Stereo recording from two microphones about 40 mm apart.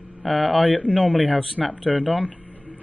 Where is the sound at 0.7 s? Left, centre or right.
Left.